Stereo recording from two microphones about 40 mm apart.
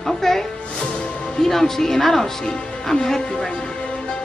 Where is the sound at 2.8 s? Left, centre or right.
Centre.